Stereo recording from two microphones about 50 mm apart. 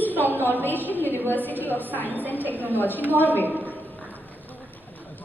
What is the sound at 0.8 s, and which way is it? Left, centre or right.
Speech, right.